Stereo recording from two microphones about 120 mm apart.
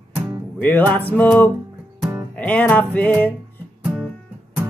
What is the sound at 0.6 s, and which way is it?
Music, 15° left (ahead or behind).